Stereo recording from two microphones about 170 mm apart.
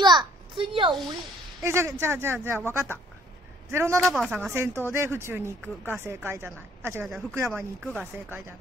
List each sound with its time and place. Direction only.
0.0 s a sound: 25° right (ahead or behind)
1.6 s speech: 20° right (ahead or behind)
4.0 s speech: centre (ahead or behind)
4.5 s speech: 15° right (ahead or behind)
7.1 s speech: centre (ahead or behind)
7.3 s speech: 15° right (ahead or behind)
7.8 s speech: centre (ahead or behind)